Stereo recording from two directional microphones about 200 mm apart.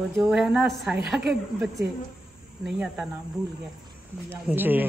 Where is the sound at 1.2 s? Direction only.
55° right (ahead or behind).